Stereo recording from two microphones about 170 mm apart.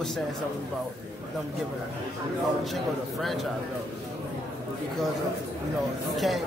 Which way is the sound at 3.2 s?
Centre (ahead or behind).